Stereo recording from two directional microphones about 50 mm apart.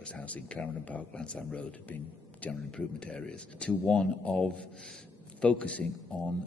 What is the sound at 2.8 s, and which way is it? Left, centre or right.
A man's voice, centre.